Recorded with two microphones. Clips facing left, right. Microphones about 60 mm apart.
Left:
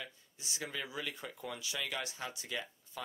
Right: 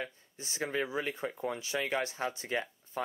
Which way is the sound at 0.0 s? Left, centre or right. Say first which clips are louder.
Right 7 dB; right.